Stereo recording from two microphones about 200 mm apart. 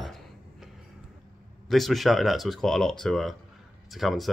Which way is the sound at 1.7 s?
Centre (ahead or behind).